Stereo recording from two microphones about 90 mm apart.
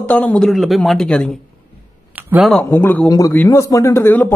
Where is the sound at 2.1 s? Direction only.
20° right (ahead or behind).